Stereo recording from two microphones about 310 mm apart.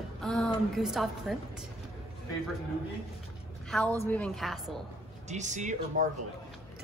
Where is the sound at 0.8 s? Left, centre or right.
Centre.